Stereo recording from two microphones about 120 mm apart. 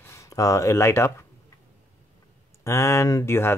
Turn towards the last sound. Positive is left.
turn(degrees=20)  # may be behind; listen again after turning